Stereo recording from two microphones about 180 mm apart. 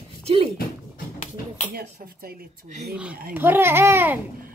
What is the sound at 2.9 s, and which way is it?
Speech, 5° right (ahead or behind).